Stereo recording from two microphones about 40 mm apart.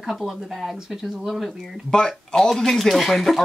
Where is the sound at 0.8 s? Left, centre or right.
Centre.